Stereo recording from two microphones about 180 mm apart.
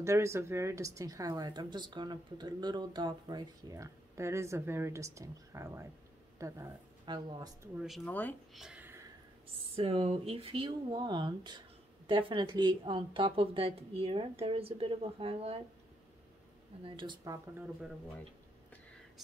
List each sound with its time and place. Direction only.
0.0 s speech: 15° right (ahead or behind)
8.0 s speech: 10° left (ahead or behind)
8.5 s a sound: 5° right (ahead or behind)
9.8 s a woman's voice: 30° right (ahead or behind)
16.8 s a woman's voice: 25° right (ahead or behind)